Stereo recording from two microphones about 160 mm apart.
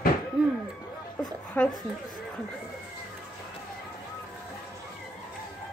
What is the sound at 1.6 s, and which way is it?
Speech, 10° left (ahead or behind).